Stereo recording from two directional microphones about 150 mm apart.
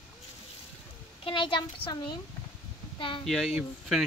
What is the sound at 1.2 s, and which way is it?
Speech, 35° left (ahead or behind).